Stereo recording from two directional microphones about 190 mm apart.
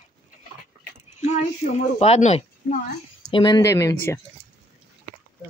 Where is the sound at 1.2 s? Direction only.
35° left (ahead or behind).